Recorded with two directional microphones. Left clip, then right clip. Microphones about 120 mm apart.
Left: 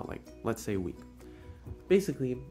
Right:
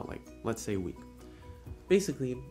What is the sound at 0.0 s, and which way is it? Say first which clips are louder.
Music: left 1 dB; 20° left (ahead or behind).